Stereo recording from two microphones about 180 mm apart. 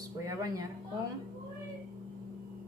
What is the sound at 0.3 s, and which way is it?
Speech, 20° right (ahead or behind).